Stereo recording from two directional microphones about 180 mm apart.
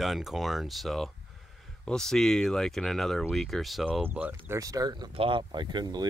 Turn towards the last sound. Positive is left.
turn(degrees=-25)  # may be behind; listen again after turning